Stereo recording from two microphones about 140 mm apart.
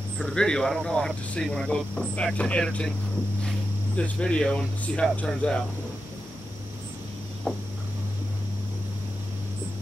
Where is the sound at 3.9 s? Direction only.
10° left (ahead or behind).